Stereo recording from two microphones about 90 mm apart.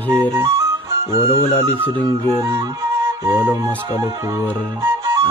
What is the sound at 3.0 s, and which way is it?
Music, 30° right (ahead or behind).